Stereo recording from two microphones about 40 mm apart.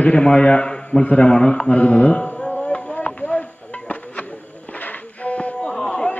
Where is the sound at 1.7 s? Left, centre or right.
Left.